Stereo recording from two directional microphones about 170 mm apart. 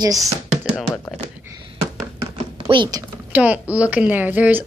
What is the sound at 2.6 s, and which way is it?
Speech, 30° right (ahead or behind).